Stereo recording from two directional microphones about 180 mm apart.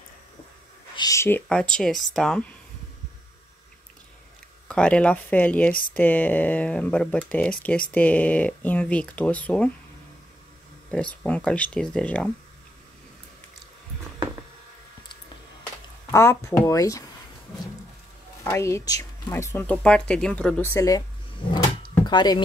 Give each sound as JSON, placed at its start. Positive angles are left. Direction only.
{"t": 0.9, "sound": "speech", "side_deg": 20}
{"t": 4.6, "sound": "speech", "side_deg": 5}
{"t": 10.9, "sound": "speech", "side_deg": 5}
{"t": 16.1, "sound": "speech", "side_deg": 15}
{"t": 18.4, "sound": "speech", "side_deg": 15}
{"t": 22.0, "sound": "speech", "side_deg": 25}